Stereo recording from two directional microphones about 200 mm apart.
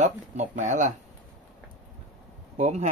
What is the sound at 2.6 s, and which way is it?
Speech, 35° right (ahead or behind).